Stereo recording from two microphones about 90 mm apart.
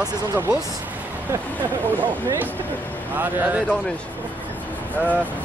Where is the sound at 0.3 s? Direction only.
25° right (ahead or behind).